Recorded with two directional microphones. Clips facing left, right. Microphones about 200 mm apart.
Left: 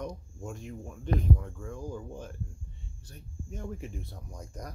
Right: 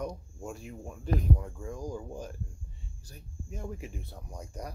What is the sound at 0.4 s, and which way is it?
Speech, 10° right (ahead or behind).